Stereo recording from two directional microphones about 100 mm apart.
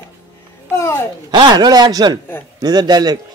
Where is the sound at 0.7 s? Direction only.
25° left (ahead or behind).